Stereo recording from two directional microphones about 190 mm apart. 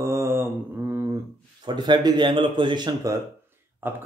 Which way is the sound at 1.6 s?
25° right (ahead or behind).